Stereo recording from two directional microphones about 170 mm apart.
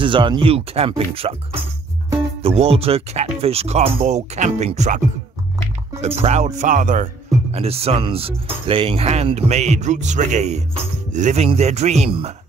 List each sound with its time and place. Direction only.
0.0 s speech: 30° right (ahead or behind); by 7.1 s 50° right (ahead or behind)
7.5 s speech: 35° right (ahead or behind)